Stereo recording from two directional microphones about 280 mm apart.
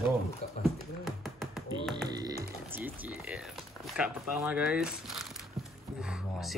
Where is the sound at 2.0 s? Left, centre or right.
Centre.